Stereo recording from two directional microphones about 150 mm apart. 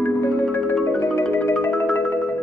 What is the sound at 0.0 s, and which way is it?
Music, 15° left (ahead or behind).